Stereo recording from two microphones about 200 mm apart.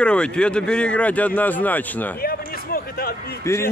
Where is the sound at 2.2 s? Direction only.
50° left (ahead or behind).